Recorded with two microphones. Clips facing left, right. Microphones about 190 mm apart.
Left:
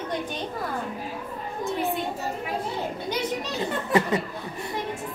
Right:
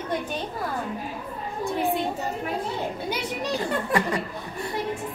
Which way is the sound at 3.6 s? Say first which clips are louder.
Left 3 dB; 20° left (ahead or behind).